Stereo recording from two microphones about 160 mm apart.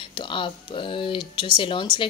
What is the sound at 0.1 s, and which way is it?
Speech, 30° left (ahead or behind).